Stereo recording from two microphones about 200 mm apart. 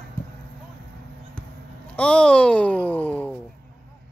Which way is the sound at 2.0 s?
5° left (ahead or behind).